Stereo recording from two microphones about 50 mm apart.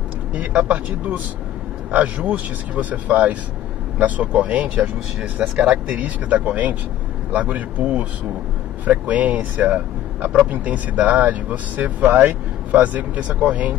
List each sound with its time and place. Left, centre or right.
0.5 s speech: right
5.2 s speech: centre
5.9 s speech: right